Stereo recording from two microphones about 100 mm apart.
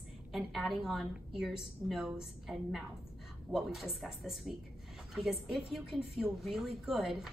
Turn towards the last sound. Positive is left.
turn(degrees=-5)  # may be behind; listen again after turning